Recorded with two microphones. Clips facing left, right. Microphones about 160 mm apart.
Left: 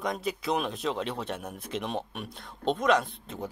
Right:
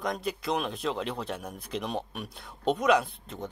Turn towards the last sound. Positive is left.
turn(degrees=0)  # may be behind; listen again after turning